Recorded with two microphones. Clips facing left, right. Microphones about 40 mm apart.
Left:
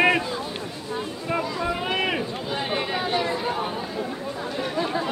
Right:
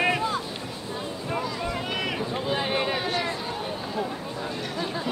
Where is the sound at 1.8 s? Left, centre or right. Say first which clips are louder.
Left 4 dB; left.